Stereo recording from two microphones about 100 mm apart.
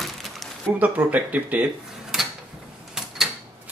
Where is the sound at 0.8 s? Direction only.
15° right (ahead or behind).